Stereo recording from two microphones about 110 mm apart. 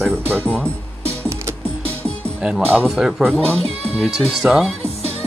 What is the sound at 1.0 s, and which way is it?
Music, 25° right (ahead or behind).